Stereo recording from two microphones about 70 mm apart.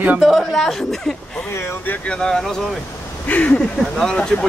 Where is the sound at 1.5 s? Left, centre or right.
Left.